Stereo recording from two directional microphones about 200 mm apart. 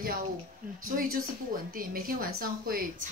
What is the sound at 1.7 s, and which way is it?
A woman's voice, 45° right (ahead or behind).